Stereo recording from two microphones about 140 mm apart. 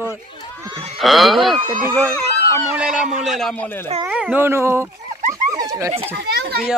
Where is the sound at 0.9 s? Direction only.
Centre (ahead or behind).